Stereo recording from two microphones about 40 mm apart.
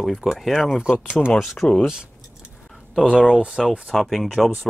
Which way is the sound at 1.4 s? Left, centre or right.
Centre.